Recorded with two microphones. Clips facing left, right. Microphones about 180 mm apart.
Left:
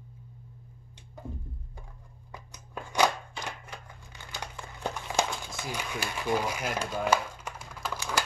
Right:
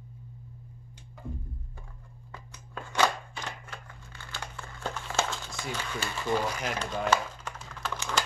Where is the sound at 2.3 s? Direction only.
15° left (ahead or behind).